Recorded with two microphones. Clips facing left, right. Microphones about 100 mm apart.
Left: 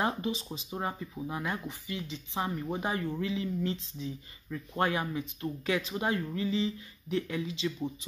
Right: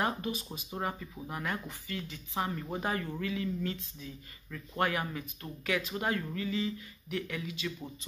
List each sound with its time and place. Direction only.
0.0 s speech: 20° left (ahead or behind)